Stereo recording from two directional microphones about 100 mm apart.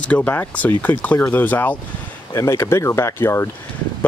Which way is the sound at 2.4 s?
30° left (ahead or behind).